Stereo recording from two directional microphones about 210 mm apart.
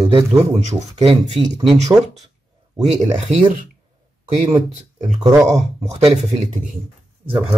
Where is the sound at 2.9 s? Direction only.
35° right (ahead or behind).